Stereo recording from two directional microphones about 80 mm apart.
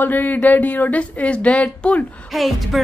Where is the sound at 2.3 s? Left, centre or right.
Centre.